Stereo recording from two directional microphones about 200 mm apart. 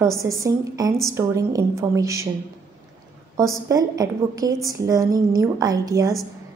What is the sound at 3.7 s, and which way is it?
A woman's voice, 15° right (ahead or behind).